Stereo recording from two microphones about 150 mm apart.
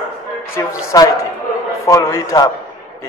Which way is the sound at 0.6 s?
20° left (ahead or behind).